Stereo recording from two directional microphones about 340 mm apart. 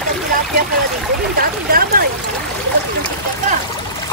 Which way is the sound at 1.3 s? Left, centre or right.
Right.